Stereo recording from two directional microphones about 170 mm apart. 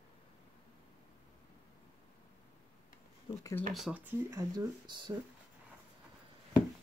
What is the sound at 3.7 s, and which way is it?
Speech, 5° right (ahead or behind).